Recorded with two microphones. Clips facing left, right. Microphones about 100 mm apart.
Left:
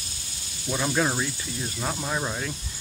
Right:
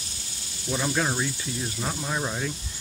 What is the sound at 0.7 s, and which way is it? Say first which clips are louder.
Speech: left 1 dB; 5° left (ahead or behind).